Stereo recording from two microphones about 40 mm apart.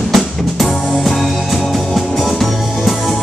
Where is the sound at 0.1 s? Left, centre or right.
Centre.